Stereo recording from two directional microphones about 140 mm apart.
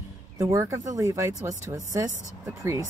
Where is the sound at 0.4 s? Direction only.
20° right (ahead or behind).